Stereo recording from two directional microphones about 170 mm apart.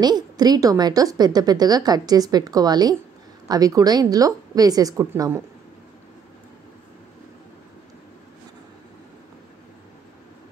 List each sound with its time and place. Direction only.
0.0 s a woman's voice: 25° right (ahead or behind)